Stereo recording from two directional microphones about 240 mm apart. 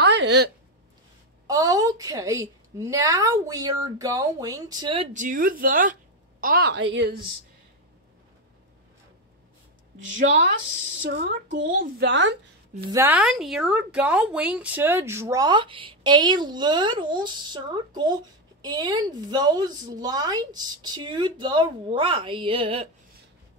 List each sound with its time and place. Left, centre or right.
0.0 s a sound: right
1.5 s a woman's voice: centre; by 7.2 s right
10.1 s a woman's voice: right
11.0 s speech: right
12.9 s speech: centre; by 22.8 s right